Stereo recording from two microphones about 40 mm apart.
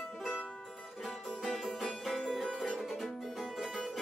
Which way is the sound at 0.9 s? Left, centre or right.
Centre.